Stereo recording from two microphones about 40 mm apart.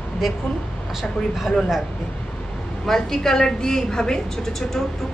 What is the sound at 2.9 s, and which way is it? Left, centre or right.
A woman's voice, centre.